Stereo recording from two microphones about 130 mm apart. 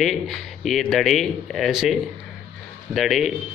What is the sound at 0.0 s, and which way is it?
Speech, centre (ahead or behind).